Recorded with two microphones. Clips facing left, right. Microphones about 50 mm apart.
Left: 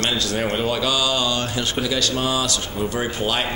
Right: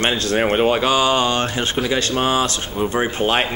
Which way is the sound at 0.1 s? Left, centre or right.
Right.